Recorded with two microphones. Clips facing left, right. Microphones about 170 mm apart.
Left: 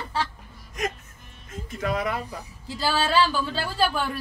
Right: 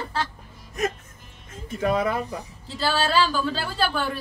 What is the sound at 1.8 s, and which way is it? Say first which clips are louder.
Speech: right 4 dB; 30° right (ahead or behind).